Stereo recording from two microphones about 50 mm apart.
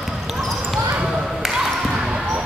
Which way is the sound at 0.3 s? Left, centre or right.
Centre.